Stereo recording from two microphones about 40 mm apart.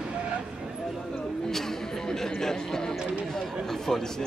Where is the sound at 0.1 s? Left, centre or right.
Right.